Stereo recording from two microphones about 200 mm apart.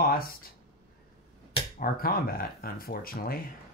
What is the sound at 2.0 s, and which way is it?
Speech, 50° left (ahead or behind).